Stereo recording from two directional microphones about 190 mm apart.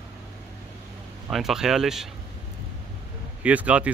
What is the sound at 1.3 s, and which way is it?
Speech, centre (ahead or behind).